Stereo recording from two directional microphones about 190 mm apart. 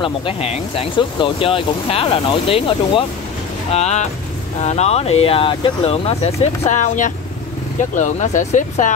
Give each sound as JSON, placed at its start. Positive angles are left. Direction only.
{"t": 0.0, "sound": "speech", "side_deg": 30}